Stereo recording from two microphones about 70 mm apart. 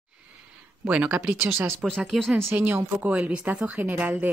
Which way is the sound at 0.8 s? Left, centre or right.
Centre.